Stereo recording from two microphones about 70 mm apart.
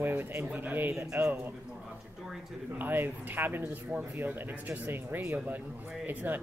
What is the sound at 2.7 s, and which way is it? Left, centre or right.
Speech, right.